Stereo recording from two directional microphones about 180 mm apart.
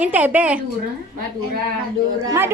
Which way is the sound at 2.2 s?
15° right (ahead or behind).